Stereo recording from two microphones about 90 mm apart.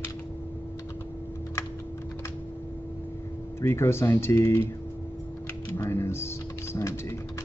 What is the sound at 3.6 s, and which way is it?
Speech, 30° left (ahead or behind).